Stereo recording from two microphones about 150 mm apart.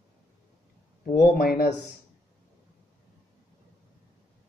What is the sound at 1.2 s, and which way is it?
Speech, 75° left (ahead or behind).